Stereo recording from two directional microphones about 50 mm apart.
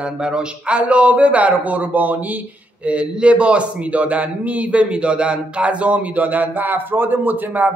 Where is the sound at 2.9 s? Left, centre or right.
Right.